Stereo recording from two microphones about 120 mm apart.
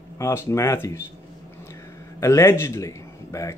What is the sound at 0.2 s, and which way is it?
Speech, 20° left (ahead or behind).